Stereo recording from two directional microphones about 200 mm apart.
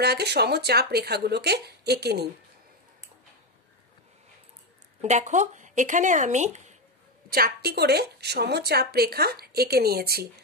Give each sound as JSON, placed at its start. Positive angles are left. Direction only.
{"t": 0.0, "sound": "speech", "side_deg": -55}
{"t": 5.0, "sound": "speech", "side_deg": -35}
{"t": 7.2, "sound": "a woman's voice", "side_deg": -50}